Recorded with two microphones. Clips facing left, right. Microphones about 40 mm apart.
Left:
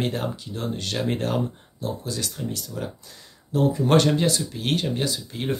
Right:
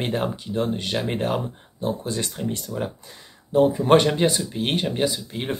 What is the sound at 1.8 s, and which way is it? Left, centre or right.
Speech, right.